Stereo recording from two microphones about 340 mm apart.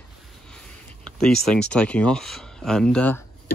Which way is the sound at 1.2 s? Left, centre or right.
Centre.